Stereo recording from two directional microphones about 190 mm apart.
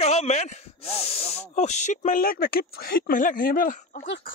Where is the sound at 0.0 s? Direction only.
35° left (ahead or behind).